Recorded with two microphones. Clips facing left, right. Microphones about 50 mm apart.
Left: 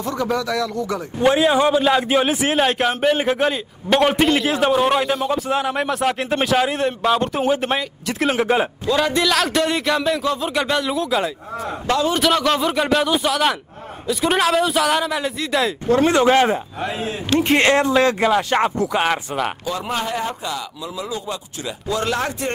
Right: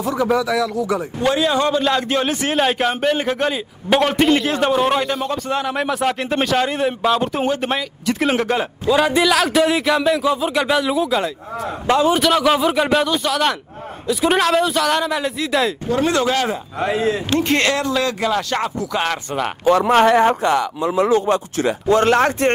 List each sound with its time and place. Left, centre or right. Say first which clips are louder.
0.0 s speech: right 4 dB; centre
1.2 s a man's voice: left 3 dB; centre
8.8 s a man's voice: right 7 dB; centre
11.9 s a man's voice: right 4 dB; centre
12.2 s a man's voice: right 2 dB; centre
15.9 s speech: left 5 dB; left
16.8 s speech: right 6 dB; right
17.6 s speech: left 3 dB; left
19.6 s a man's voice: right 11 dB; right